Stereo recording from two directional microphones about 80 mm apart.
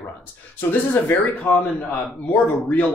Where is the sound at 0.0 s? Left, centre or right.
Left.